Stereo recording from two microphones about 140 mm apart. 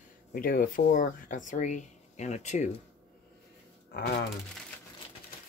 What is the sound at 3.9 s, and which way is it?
Speech, 90° left.